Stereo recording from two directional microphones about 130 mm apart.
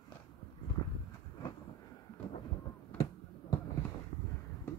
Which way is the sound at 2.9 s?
10° left (ahead or behind).